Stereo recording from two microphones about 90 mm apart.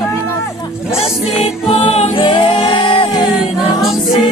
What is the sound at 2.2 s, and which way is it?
Music, 60° left (ahead or behind).